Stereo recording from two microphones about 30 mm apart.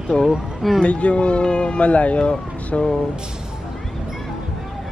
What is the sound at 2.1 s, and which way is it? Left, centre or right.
Speech, left.